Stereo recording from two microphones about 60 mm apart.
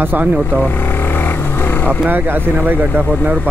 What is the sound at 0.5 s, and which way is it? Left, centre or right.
Vehicle, left.